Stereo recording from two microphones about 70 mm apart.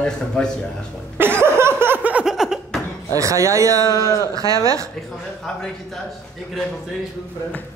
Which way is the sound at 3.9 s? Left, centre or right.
Left.